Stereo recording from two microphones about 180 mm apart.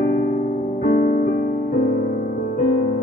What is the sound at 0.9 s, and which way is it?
Music, 55° left (ahead or behind).